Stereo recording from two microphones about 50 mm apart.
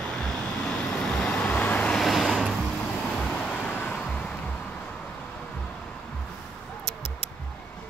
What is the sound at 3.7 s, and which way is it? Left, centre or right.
Vehicle, left.